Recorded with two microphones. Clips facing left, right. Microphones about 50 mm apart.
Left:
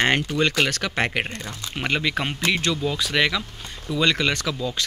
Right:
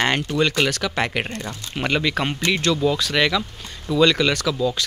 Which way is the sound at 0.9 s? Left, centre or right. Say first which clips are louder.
Right 1 dB; left.